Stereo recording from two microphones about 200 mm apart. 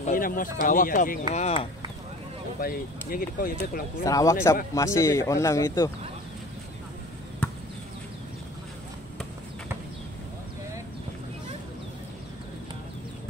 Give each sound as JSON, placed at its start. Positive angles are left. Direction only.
{"t": 0.0, "sound": "speech", "side_deg": 45}
{"t": 1.3, "sound": "speech", "side_deg": 30}
{"t": 2.6, "sound": "speech", "side_deg": 45}
{"t": 4.0, "sound": "speech", "side_deg": 15}